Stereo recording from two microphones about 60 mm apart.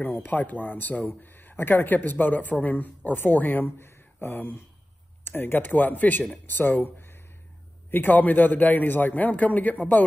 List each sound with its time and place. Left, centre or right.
0.0 s a man's voice: left
3.6 s a man's voice: left